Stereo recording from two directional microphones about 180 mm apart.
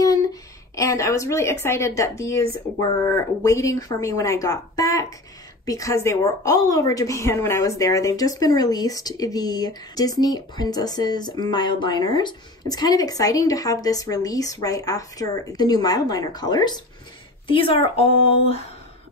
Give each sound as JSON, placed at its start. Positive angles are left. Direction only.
{"t": 0.0, "sound": "a woman's voice", "side_deg": 20}